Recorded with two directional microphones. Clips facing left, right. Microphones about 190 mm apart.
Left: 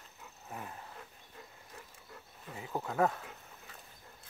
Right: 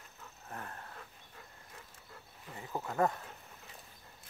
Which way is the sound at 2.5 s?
5° left (ahead or behind).